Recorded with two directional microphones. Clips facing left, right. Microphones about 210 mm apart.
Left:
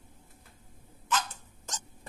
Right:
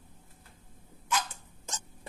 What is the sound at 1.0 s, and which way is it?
Dog, 10° right (ahead or behind).